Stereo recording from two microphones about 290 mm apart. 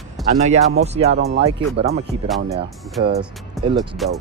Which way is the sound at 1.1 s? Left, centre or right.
Right.